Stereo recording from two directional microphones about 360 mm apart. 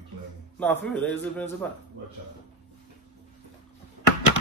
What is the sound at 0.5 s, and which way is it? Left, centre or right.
A man's voice, centre.